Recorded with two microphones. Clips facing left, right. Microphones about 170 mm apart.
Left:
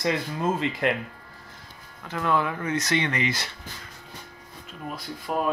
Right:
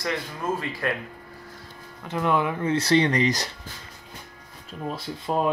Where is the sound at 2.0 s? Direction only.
20° right (ahead or behind); by 3.4 s 40° right (ahead or behind).